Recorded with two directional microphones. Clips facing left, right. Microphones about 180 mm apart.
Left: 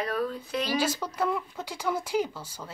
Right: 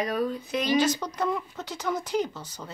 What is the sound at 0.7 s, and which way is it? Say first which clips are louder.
A woman's voice: right 6 dB; 10° left (ahead or behind).